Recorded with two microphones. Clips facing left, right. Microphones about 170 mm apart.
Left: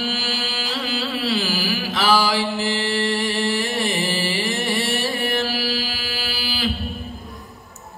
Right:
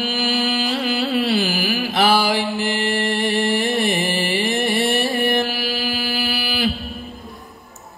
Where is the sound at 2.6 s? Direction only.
55° right (ahead or behind).